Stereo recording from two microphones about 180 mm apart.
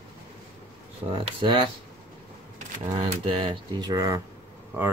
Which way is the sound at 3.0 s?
30° right (ahead or behind).